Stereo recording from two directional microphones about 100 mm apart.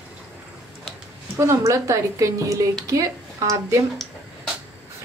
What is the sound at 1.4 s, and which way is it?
A woman's voice, 30° right (ahead or behind).